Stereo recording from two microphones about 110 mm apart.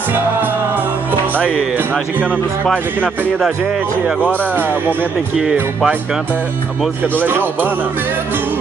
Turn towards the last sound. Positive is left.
turn(degrees=-15)  # may be behind; listen again after turning